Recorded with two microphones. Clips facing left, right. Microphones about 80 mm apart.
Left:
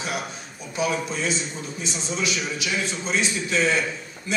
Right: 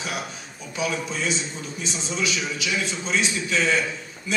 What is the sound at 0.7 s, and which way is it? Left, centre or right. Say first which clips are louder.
Speech: left 2 dB; left.